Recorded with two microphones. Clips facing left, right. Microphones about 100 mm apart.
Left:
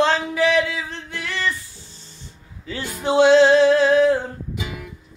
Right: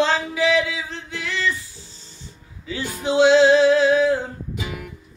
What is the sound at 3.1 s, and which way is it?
Music, 50° left (ahead or behind).